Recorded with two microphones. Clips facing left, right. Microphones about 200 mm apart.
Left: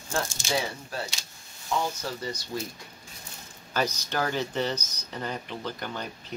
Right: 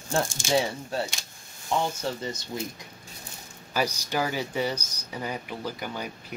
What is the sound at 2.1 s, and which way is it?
Speech, 25° right (ahead or behind).